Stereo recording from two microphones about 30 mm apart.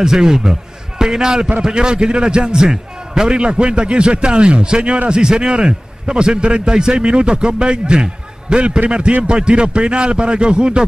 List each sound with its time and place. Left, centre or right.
0.0 s a man's voice: centre
3.3 s a man's voice: right